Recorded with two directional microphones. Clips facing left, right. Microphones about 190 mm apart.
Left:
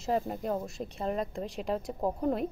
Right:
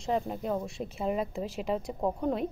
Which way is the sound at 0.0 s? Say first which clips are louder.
Even; centre (ahead or behind).